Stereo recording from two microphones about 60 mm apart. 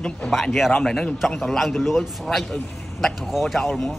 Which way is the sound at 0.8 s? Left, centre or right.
Centre.